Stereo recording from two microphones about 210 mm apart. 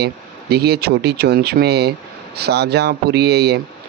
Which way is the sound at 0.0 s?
50° right (ahead or behind).